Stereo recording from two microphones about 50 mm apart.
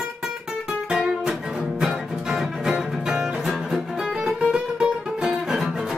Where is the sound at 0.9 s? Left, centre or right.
Centre.